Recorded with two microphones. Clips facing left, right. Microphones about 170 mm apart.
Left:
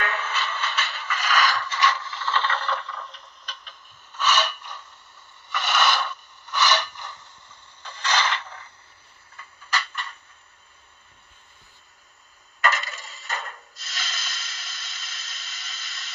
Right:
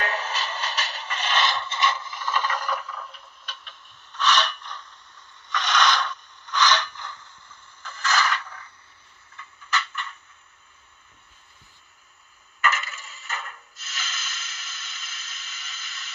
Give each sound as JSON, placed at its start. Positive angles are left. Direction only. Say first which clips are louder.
{"t": 0.0, "sound": "music", "louder": "even", "side_deg": -35}
{"t": 5.5, "sound": "scrape", "louder": "even", "side_deg": 5}
{"t": 8.2, "sound": "a sound", "louder": "right 1 dB", "side_deg": 25}
{"t": 12.6, "sound": "coin", "louder": "left 1 dB", "side_deg": 35}